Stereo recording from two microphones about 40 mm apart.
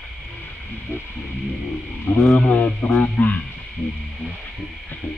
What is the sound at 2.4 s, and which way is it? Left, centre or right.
Speech, left.